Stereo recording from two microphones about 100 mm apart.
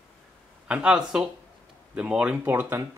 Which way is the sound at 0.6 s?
10° right (ahead or behind).